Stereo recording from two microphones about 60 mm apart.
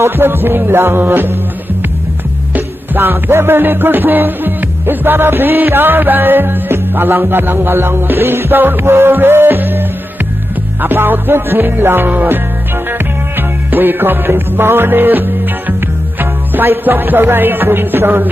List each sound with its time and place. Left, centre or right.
0.0 s music: right
2.5 s music: right